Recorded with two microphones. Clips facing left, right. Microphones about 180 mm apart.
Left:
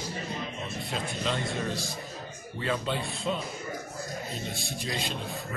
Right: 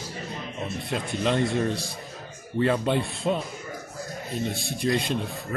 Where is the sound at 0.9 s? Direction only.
55° right (ahead or behind).